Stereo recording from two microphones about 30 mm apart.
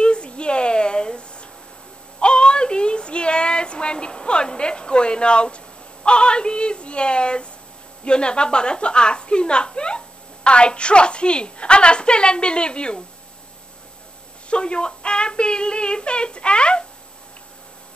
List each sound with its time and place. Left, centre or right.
0.0 s a sound: left
6.0 s a woman's voice: left
14.5 s a woman's voice: left